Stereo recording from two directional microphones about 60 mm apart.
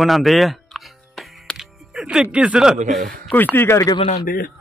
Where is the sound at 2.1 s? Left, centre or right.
Centre.